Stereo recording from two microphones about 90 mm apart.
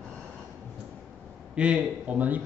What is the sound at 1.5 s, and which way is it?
Speech, 15° right (ahead or behind).